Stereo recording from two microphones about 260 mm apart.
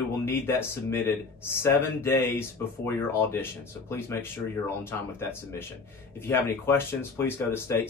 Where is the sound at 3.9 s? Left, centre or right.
Centre.